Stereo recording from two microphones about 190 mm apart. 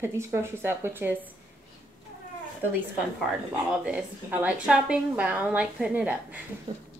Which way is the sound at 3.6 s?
5° right (ahead or behind).